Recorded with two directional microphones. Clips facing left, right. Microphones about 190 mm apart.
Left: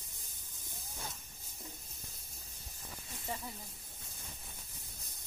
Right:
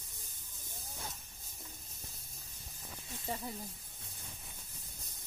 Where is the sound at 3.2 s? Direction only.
25° right (ahead or behind).